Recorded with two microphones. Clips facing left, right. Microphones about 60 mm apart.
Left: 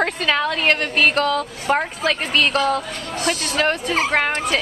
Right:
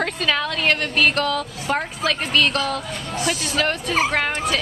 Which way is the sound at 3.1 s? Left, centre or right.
Centre.